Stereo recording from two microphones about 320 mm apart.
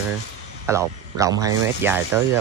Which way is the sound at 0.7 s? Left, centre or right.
Centre.